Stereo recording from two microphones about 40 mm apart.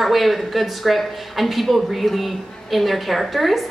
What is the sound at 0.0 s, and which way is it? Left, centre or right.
A woman's voice, centre.